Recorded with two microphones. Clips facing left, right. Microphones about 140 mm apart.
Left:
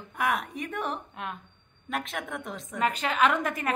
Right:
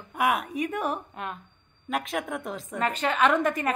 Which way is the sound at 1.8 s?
Centre (ahead or behind).